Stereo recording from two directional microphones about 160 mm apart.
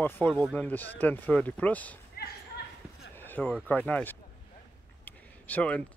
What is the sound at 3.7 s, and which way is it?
Speech, 10° left (ahead or behind).